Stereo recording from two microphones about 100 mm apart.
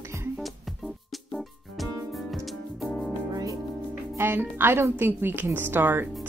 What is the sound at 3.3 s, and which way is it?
Music, 40° right (ahead or behind).